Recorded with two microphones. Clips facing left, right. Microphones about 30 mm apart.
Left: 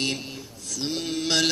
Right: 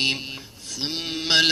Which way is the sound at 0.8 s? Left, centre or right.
Right.